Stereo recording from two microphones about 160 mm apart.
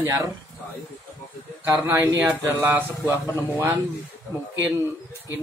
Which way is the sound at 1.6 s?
10° right (ahead or behind).